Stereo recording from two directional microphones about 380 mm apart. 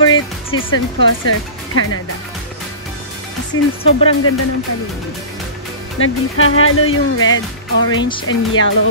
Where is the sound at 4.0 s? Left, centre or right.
Left.